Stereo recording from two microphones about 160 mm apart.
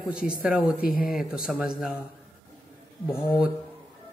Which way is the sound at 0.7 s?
65° left (ahead or behind).